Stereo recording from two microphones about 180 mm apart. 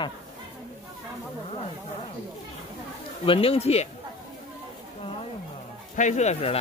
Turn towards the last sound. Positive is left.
turn(degrees=35)  # may be behind; listen again after turning